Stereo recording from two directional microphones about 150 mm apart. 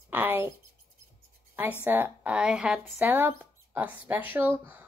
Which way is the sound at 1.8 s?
15° right (ahead or behind).